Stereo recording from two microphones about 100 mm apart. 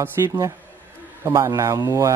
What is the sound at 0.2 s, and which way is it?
A man's voice, 35° right (ahead or behind).